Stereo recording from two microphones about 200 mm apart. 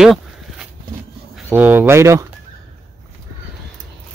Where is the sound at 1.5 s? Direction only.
10° right (ahead or behind).